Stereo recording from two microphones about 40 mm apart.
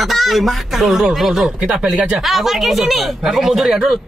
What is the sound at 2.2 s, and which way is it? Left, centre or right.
Speech, centre.